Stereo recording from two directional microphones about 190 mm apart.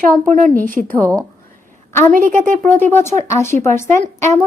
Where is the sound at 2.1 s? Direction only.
45° right (ahead or behind).